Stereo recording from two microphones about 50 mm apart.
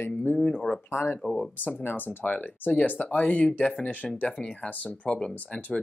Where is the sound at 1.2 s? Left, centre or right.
Centre.